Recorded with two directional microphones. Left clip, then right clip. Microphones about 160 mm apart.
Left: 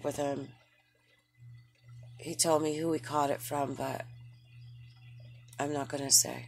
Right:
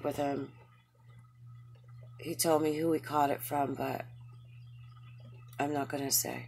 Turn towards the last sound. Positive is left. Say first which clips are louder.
# left 5 dB
turn(degrees=30)  # may be behind; listen again after turning